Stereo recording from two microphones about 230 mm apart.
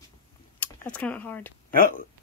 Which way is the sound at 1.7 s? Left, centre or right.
Left.